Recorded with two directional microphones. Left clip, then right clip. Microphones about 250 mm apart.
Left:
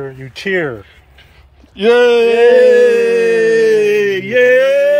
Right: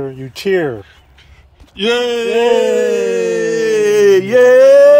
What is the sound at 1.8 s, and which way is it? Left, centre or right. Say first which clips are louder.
Speech: left 6 dB; centre.